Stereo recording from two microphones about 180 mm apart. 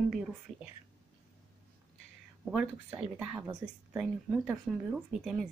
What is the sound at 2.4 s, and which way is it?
A woman's voice, 5° right (ahead or behind).